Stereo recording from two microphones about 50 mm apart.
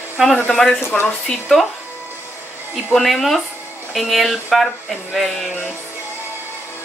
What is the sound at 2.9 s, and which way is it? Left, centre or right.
Speech, centre.